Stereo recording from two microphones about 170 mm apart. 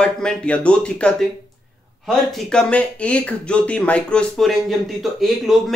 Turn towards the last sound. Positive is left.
turn(degrees=0)  # may be behind; listen again after turning